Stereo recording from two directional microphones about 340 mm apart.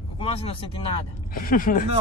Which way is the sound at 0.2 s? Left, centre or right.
Centre.